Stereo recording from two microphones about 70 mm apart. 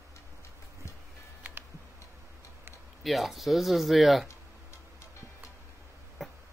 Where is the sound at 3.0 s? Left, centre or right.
Centre.